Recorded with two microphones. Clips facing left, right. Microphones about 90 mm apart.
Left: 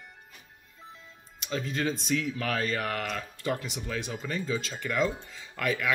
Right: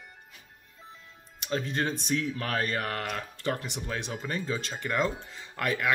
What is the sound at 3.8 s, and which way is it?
Speech, 35° right (ahead or behind).